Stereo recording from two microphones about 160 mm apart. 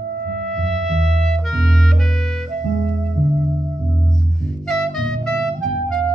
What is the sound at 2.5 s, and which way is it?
Music, 45° right (ahead or behind).